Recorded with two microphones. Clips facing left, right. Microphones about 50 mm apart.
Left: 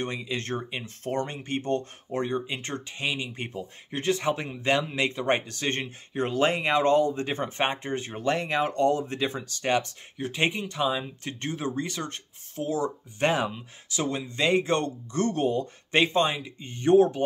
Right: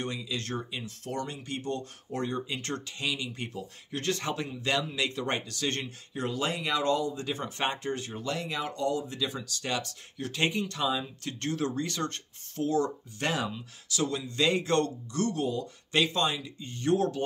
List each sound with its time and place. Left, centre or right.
0.0 s speech: left
8.2 s speech: left; by 12.9 s centre
13.2 s speech: left
15.1 s speech: left